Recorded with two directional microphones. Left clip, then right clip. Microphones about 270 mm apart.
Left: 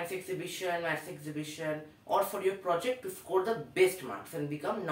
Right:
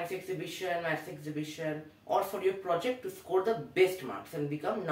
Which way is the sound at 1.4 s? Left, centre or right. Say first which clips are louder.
Left 1 dB; centre.